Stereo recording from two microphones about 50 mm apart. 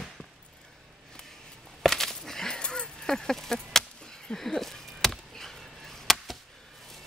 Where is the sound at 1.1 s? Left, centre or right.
Centre.